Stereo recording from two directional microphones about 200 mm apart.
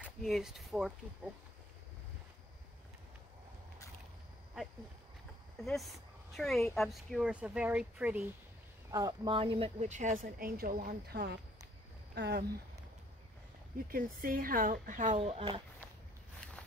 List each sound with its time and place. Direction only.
0.0 s speech: centre (ahead or behind)
5.6 s speech: centre (ahead or behind)
8.9 s speech: 20° right (ahead or behind); by 12.4 s 55° right (ahead or behind)
13.8 s speech: 45° right (ahead or behind); by 15.6 s 30° right (ahead or behind)